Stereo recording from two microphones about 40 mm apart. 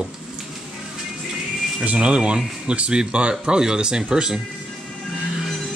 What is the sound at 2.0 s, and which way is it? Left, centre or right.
Speech, right.